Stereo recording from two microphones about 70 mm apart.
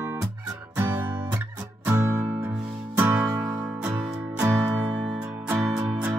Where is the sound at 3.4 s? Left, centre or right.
Centre.